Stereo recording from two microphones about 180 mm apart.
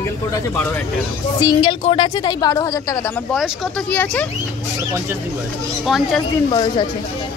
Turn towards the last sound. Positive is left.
turn(degrees=25)  # may be behind; listen again after turning